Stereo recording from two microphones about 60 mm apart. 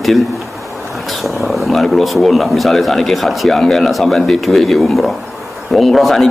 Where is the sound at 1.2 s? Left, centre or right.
Centre.